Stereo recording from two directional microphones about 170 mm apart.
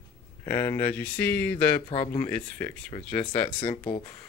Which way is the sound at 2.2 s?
10° left (ahead or behind).